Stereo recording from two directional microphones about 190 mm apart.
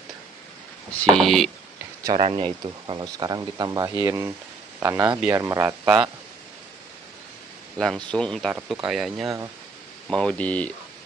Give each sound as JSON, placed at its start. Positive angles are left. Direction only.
{"t": 1.1, "sound": "speech", "side_deg": 0}
{"t": 2.1, "sound": "speech", "side_deg": -30}
{"t": 7.7, "sound": "speech", "side_deg": 5}